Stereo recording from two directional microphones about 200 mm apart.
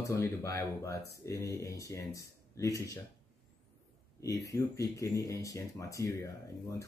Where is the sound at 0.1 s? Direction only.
15° left (ahead or behind).